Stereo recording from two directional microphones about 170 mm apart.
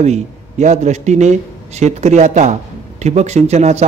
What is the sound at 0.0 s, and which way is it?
A man's voice, 40° right (ahead or behind).